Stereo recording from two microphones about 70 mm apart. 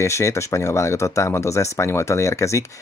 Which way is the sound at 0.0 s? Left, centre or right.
Left.